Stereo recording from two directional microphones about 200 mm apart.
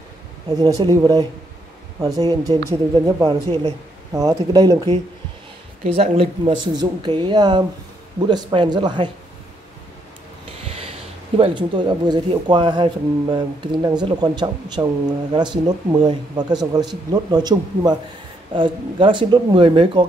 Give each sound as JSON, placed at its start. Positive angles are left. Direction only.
{"t": 0.5, "sound": "a woman's voice", "side_deg": -20}
{"t": 5.9, "sound": "speech", "side_deg": -30}
{"t": 11.3, "sound": "speech", "side_deg": -25}